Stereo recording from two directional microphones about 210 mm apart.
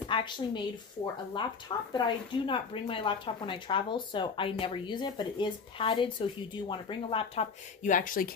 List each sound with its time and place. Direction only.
0.1 s a woman's voice: 20° left (ahead or behind)
7.8 s speech: 40° left (ahead or behind)